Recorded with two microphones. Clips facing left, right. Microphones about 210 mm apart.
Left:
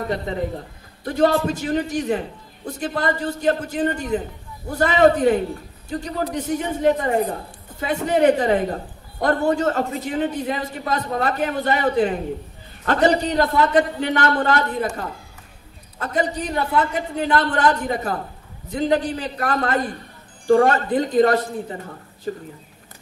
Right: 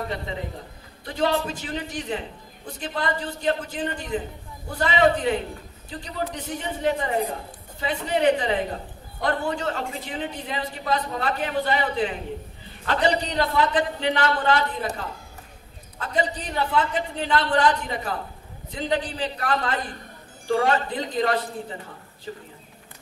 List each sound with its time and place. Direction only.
0.1 s a man's voice: 45° left (ahead or behind)
16.0 s a man's voice: 45° left (ahead or behind)